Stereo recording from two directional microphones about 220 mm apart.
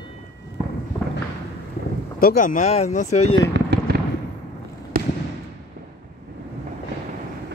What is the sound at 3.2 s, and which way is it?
Speech, 75° left (ahead or behind).